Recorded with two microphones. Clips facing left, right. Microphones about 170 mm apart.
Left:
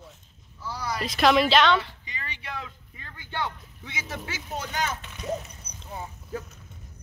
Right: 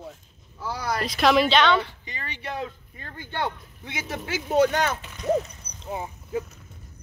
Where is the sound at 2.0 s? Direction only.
45° right (ahead or behind).